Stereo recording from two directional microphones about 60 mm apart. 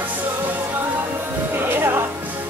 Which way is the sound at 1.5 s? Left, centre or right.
Right.